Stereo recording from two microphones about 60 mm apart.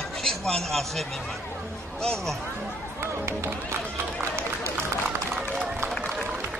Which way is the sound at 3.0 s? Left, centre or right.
Right.